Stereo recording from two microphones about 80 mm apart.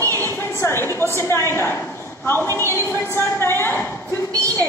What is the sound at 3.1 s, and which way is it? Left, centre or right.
Speech, left.